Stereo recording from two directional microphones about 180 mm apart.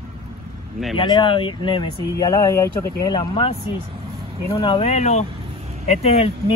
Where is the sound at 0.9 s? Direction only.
25° left (ahead or behind).